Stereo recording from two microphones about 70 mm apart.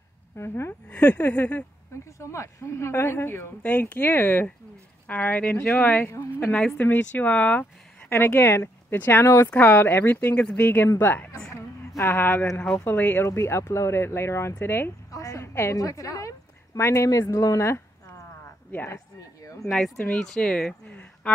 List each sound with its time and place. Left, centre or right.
0.4 s speech: left
0.8 s speech: left
2.1 s speech: left
3.6 s speech: left
6.1 s speech: left
6.5 s speech: left
8.1 s speech: left
9.2 s speech: left
9.5 s speech: left
15.0 s a woman's voice: left
15.8 s speech: left
20.1 s speech: centre